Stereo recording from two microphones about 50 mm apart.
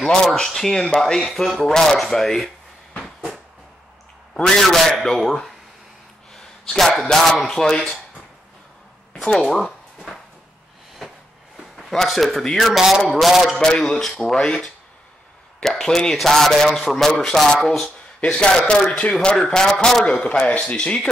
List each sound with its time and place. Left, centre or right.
0.1 s speech: centre
4.3 s speech: centre
6.3 s a sound: centre
7.0 s speech: centre
9.4 s speech: centre
11.0 s a sound: centre
11.7 s speech: centre
13.6 s speech: centre
17.8 s speech: centre
20.2 s speech: left